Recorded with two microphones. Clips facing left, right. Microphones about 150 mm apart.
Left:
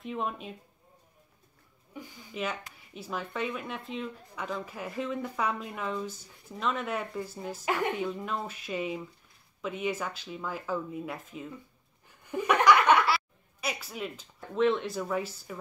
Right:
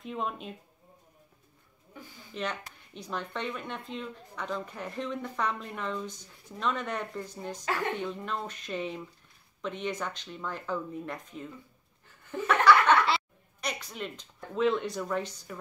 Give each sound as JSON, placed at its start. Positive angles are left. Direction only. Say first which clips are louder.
{"t": 0.0, "sound": "speech", "louder": "left 1 dB", "side_deg": 0}
{"t": 2.0, "sound": "speech", "louder": "left 1 dB", "side_deg": 5}
{"t": 12.3, "sound": "laughter", "louder": "even", "side_deg": 15}
{"t": 13.6, "sound": "speech", "louder": "left 1 dB", "side_deg": 5}